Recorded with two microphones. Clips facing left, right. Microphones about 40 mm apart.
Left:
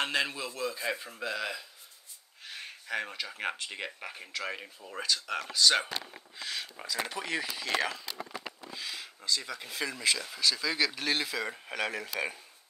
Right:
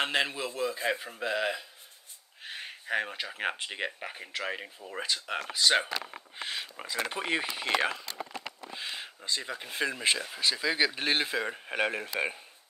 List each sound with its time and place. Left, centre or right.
0.0 s a man's voice: centre
2.4 s a sound: right
3.7 s speech: right